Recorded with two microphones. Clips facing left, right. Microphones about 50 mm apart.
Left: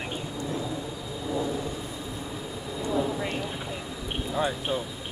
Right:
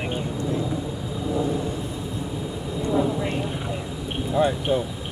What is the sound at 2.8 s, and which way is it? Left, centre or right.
Thunder, centre.